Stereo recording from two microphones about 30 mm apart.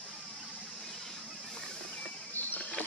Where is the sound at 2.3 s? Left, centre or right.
Left.